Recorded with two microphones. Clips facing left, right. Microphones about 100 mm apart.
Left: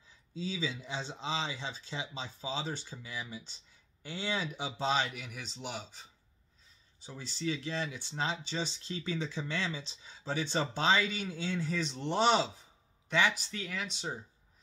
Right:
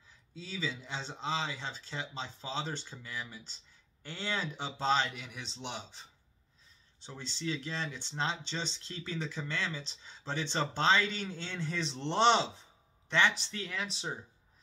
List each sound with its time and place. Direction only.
0.4 s speech: 15° left (ahead or behind)
7.0 s speech: 10° left (ahead or behind)
13.6 s speech: centre (ahead or behind)